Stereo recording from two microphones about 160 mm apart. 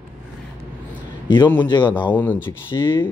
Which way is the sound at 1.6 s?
30° left (ahead or behind).